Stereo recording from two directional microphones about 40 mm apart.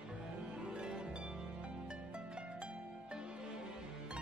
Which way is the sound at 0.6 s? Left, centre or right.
Right.